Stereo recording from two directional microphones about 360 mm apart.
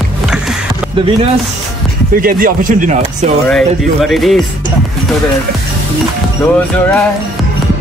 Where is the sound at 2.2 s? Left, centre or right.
Right.